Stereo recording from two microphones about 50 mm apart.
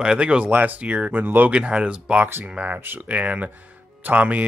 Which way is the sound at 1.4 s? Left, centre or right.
Right.